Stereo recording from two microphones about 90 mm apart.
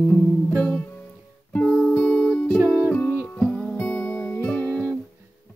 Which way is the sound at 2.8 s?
20° left (ahead or behind).